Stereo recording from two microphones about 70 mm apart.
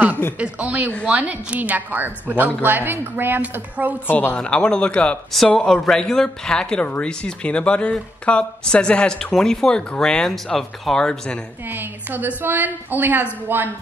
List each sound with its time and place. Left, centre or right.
0.4 s a woman's voice: right
4.4 s speech: centre
11.6 s a woman's voice: right